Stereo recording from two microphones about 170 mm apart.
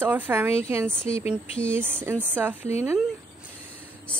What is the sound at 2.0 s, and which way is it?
Speech, 10° right (ahead or behind).